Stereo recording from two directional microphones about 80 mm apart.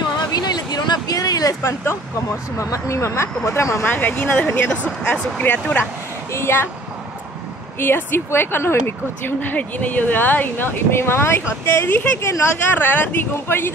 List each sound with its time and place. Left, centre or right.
0.3 s a sound: left
1.6 s speech: left
3.8 s speech: left
6.3 s speech: left
7.8 s speech: left
12.2 s speech: left